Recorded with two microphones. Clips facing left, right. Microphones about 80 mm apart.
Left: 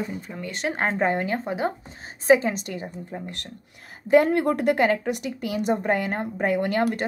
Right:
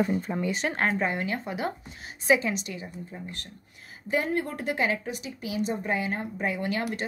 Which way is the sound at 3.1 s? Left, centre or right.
Left.